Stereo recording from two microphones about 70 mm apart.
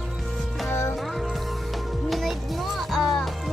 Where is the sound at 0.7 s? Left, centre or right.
Left.